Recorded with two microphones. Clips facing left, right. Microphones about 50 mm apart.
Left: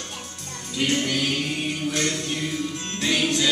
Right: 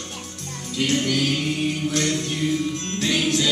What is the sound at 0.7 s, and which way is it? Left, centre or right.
Music, centre.